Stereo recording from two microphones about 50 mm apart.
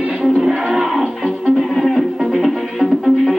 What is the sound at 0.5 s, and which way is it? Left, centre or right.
Music, centre.